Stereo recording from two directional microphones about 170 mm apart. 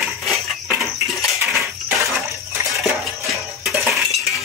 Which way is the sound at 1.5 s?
Centre (ahead or behind).